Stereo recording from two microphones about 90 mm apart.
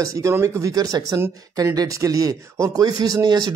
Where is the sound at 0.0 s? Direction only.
35° right (ahead or behind).